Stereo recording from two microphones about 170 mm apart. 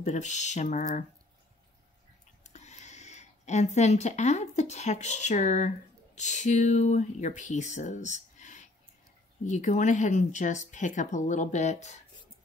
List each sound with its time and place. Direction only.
0.0 s speech: 45° left (ahead or behind)
2.4 s speech: 40° left (ahead or behind)